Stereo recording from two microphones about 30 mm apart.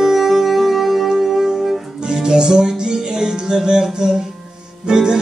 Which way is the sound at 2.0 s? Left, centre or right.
Right.